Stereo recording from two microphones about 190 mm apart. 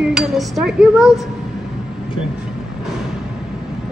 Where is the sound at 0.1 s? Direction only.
Centre (ahead or behind).